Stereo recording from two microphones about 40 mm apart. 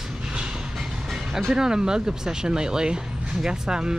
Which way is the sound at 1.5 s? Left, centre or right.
Centre.